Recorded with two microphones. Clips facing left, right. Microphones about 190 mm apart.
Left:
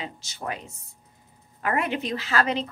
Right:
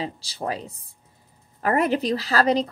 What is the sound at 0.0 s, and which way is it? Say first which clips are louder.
A woman's voice: right 5 dB; 35° right (ahead or behind).